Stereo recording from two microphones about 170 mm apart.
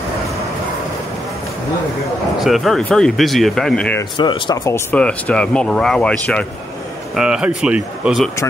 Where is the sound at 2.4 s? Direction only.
Centre (ahead or behind).